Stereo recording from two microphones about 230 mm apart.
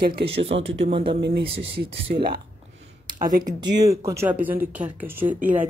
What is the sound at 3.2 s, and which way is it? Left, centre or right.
Speech, right.